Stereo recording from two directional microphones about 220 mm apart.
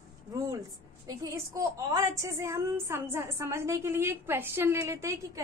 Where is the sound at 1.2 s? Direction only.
15° right (ahead or behind).